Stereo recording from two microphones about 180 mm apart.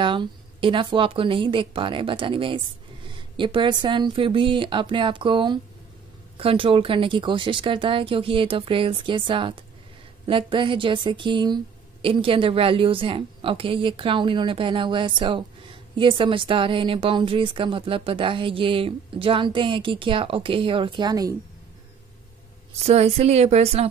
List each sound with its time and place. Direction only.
0.0 s speech: 25° right (ahead or behind)
22.8 s speech: 35° right (ahead or behind)